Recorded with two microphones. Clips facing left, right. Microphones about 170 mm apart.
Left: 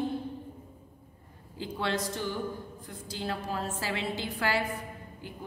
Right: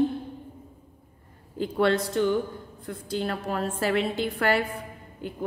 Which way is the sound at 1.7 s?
60° right (ahead or behind).